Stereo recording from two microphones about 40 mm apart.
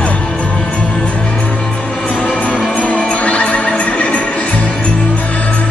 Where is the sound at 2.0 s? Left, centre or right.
Left.